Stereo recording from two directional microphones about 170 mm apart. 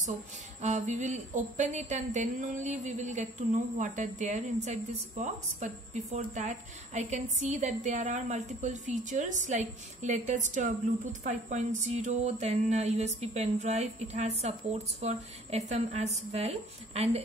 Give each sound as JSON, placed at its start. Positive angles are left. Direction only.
{"t": 0.6, "sound": "a woman's voice", "side_deg": -45}